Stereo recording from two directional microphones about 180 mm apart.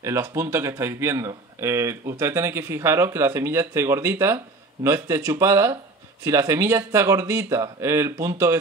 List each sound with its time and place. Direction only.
0.0 s a man's voice: 15° right (ahead or behind)